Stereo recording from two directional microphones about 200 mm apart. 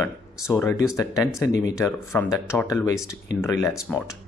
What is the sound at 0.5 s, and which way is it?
Speech, 10° left (ahead or behind).